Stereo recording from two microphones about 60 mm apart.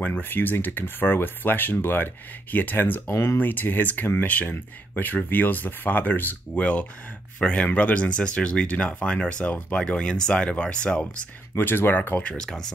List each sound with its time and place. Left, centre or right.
0.0 s speech: left; by 11.2 s centre
11.5 s speech: left
12.2 s speech: centre